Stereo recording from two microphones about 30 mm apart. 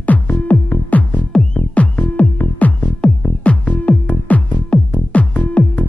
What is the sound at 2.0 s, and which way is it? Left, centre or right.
Music, left.